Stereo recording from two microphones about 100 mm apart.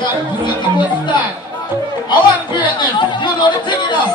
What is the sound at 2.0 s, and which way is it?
Chatter, 50° left (ahead or behind).